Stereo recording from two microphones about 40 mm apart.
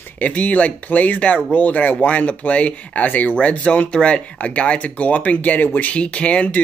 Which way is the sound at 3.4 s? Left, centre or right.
Left.